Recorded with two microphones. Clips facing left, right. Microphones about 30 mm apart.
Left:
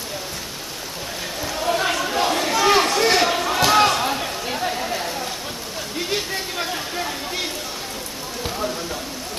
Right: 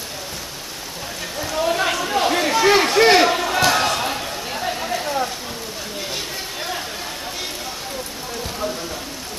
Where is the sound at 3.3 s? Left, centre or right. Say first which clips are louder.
Right 1 dB; centre.